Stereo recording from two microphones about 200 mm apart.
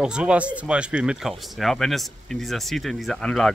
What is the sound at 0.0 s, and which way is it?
Speech, 5° right (ahead or behind).